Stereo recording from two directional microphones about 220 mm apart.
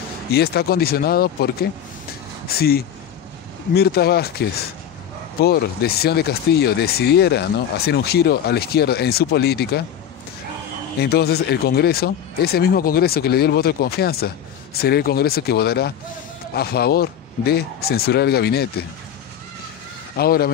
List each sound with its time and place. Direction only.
0.3 s speech: 45° left (ahead or behind)
11.0 s speech: 45° left (ahead or behind)
20.2 s speech: 45° left (ahead or behind)